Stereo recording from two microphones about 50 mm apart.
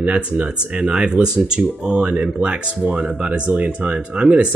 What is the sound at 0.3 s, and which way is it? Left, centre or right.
Speech, right.